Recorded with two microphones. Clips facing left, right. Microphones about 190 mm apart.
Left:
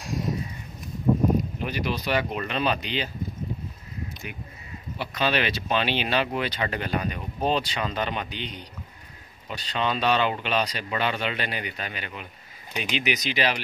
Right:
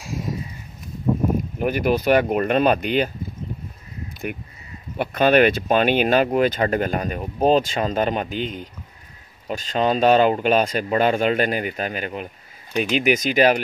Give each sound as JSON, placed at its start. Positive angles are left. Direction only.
{"t": 1.6, "sound": "speech", "side_deg": -50}
{"t": 4.3, "sound": "speech", "side_deg": -55}